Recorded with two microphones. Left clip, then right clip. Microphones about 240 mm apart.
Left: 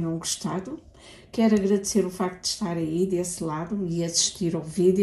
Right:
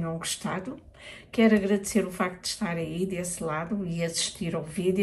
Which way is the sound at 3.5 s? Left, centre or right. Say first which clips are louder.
Left 1 dB; centre.